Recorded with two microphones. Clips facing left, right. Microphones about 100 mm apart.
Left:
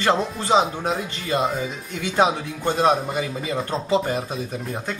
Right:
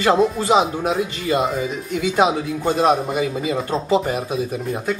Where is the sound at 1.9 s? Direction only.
15° right (ahead or behind).